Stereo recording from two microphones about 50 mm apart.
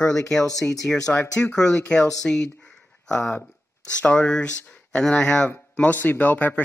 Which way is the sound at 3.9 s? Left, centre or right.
Left.